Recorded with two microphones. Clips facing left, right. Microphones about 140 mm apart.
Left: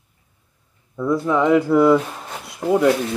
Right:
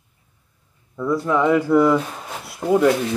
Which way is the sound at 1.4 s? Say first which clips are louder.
Left 3 dB; 15° left (ahead or behind).